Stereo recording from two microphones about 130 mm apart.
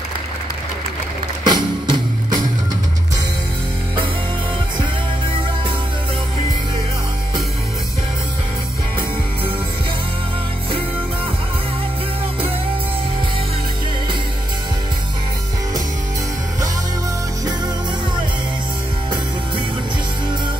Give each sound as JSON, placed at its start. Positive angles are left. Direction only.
{"t": 1.4, "sound": "music", "side_deg": -35}